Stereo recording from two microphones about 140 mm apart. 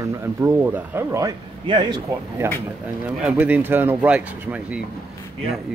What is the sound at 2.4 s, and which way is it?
Speech, 15° right (ahead or behind).